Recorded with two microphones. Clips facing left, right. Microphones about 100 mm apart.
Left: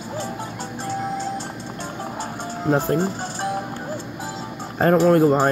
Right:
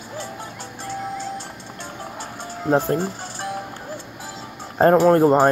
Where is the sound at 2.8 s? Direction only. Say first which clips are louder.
Left 2 dB; 25° left (ahead or behind).